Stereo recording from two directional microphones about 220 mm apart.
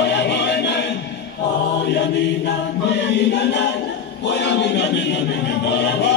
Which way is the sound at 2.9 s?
50° left (ahead or behind).